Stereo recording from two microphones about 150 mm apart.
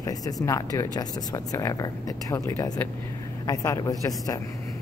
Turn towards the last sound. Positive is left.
turn(degrees=25)  # may be behind; listen again after turning